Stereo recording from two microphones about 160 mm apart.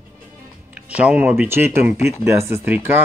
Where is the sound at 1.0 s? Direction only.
10° right (ahead or behind).